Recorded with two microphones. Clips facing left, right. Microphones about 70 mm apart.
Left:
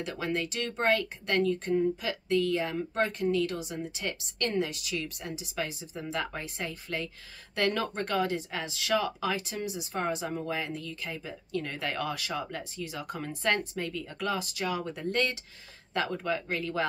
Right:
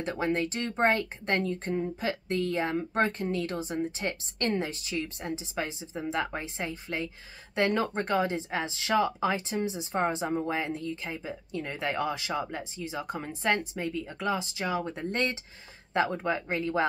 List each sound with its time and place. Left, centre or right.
0.0 s speech: right